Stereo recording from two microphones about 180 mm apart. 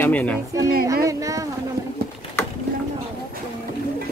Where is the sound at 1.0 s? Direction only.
20° right (ahead or behind).